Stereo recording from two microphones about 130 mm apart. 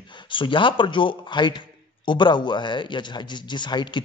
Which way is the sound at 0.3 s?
40° left (ahead or behind).